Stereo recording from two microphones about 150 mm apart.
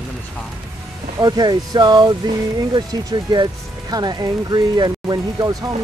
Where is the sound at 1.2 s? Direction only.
30° right (ahead or behind).